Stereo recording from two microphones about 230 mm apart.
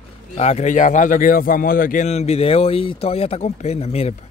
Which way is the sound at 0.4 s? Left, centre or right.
Left.